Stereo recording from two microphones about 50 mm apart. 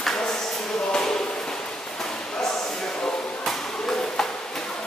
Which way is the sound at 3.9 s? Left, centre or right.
Centre.